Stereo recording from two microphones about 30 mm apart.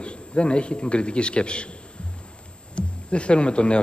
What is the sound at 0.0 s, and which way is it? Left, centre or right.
A man's voice, left.